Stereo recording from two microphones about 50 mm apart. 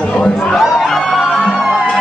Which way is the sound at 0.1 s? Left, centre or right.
Centre.